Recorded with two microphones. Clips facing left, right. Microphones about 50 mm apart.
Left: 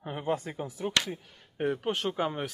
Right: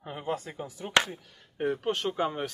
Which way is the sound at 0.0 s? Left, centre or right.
Centre.